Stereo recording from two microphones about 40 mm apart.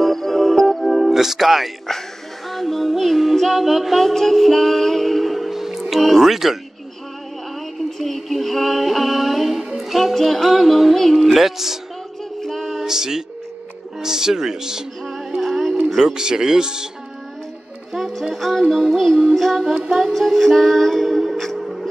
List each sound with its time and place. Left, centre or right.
0.0 s music: centre
5.8 s speech: centre
8.0 s music: centre
11.3 s speech: centre
12.4 s music: centre
12.8 s music: centre
14.0 s speech: centre
15.0 s music: centre
15.9 s speech: centre
17.9 s music: centre